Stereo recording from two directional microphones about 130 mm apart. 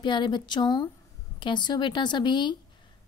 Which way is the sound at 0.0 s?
35° left (ahead or behind).